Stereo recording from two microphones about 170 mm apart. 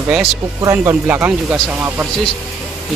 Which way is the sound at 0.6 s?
15° right (ahead or behind).